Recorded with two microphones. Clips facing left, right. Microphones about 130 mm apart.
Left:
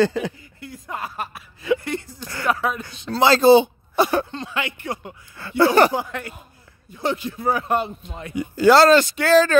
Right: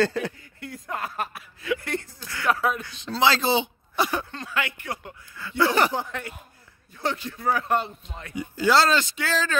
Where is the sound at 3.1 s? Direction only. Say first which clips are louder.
Left 9 dB; 45° left (ahead or behind).